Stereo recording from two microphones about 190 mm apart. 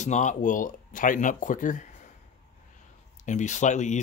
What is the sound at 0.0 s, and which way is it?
Speech, 40° left (ahead or behind).